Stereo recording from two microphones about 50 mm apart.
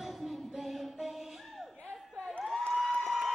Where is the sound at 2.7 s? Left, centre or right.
Centre.